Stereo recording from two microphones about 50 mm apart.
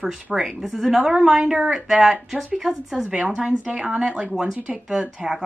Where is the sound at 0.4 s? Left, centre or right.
Centre.